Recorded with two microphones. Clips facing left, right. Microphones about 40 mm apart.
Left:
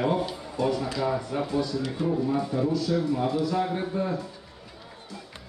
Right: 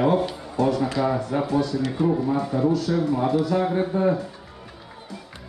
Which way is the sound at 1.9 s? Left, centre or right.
Right.